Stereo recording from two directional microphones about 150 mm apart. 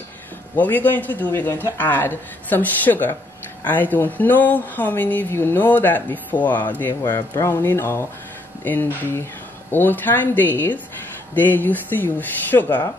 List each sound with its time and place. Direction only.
0.6 s speech: 10° left (ahead or behind)